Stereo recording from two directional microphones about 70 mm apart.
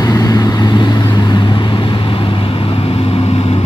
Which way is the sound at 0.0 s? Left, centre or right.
Left.